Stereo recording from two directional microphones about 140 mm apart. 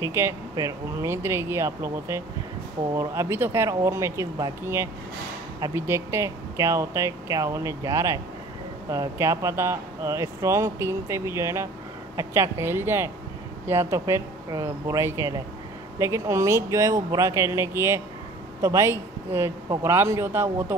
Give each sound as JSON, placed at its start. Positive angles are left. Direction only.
{"t": 0.0, "sound": "a woman's voice", "side_deg": -20}